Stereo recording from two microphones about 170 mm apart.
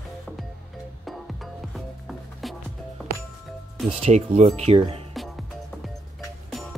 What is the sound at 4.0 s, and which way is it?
Speech, 40° right (ahead or behind).